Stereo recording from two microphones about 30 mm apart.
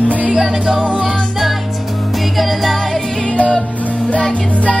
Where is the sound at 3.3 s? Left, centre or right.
Left.